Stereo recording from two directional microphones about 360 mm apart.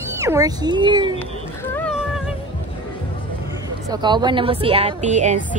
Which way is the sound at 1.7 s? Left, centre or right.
Centre.